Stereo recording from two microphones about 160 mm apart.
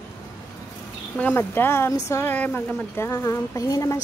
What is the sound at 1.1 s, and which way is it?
A woman's voice, 10° left (ahead or behind).